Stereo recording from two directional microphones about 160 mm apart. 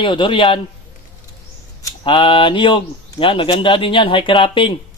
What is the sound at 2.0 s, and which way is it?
Speech, 30° left (ahead or behind).